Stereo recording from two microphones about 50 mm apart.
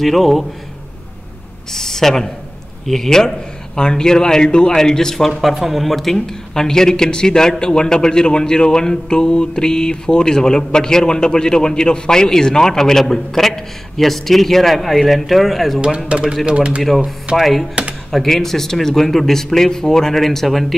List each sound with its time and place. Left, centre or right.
0.0 s a man's voice: centre
1.7 s a man's voice: centre
16.1 s speech: right
17.4 s a man's voice: centre